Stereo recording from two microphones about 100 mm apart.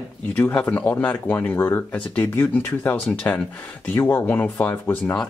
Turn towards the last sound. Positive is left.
turn(degrees=20)  # may be behind; listen again after turning